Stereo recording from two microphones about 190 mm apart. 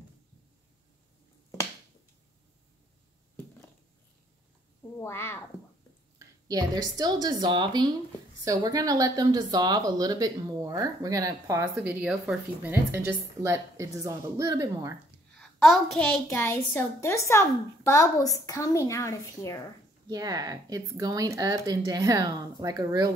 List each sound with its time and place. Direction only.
4.9 s speech: 10° left (ahead or behind)
6.1 s a woman's voice: 20° right (ahead or behind)
15.3 s a child's voice: centre (ahead or behind)
20.1 s speech: 20° right (ahead or behind)